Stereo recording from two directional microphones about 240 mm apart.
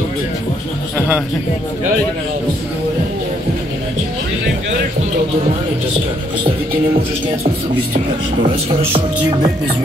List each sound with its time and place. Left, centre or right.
8.4 s speech: right